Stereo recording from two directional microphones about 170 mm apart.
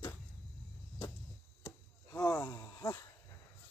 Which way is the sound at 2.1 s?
20° left (ahead or behind).